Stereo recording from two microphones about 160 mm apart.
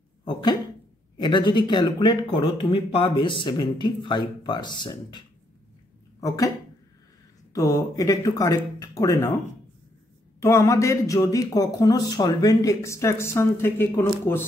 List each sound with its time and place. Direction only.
0.2 s speech: 30° left (ahead or behind)
6.2 s speech: 20° left (ahead or behind)
7.5 s speech: 20° left (ahead or behind)
10.4 s speech: 20° left (ahead or behind)